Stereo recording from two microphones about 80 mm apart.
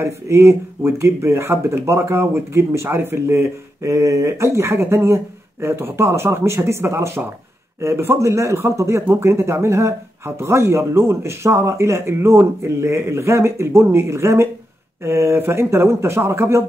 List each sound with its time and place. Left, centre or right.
0.0 s speech: right